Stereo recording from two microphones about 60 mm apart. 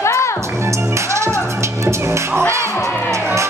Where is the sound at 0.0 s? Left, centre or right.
Left.